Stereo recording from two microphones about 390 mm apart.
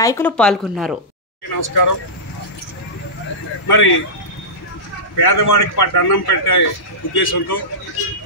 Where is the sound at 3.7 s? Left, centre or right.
Left.